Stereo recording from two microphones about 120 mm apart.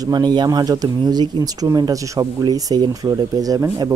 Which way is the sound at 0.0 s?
35° right (ahead or behind).